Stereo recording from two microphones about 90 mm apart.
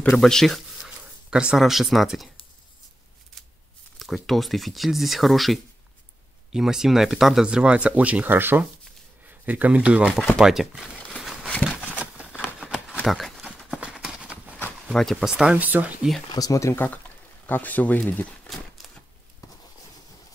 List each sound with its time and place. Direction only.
0.1 s speech: 5° left (ahead or behind)
0.8 s speech: 10° right (ahead or behind)
4.0 s speech: centre (ahead or behind)
11.1 s a sound: 5° right (ahead or behind)
11.8 s a sound: 15° right (ahead or behind)
13.0 s clip-clop: centre (ahead or behind)
14.9 s speech: 5° left (ahead or behind)
15.2 s speech: 5° right (ahead or behind)
15.5 s speech: 20° right (ahead or behind)
16.3 s speech: 40° left (ahead or behind)
16.7 s speech: 20° left (ahead or behind)